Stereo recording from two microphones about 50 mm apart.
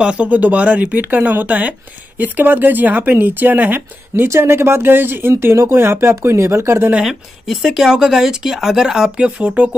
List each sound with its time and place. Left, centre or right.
0.0 s speech: right
4.4 s speech: right
5.3 s speech: right
7.1 s speech: centre; by 9.8 s right